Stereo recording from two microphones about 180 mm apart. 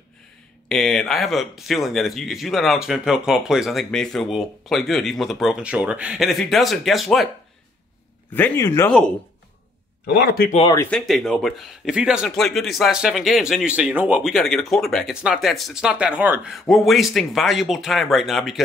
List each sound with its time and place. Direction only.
0.7 s a man's voice: 5° left (ahead or behind)
8.3 s speech: 10° left (ahead or behind)
10.0 s speech: 65° left (ahead or behind)
10.9 s a man's voice: centre (ahead or behind)